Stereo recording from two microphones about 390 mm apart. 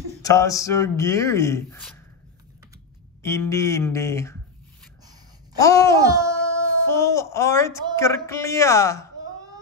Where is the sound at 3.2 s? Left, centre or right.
Centre.